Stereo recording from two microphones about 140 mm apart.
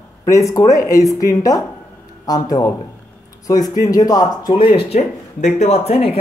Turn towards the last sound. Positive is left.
turn(degrees=45)  # may be behind; listen again after turning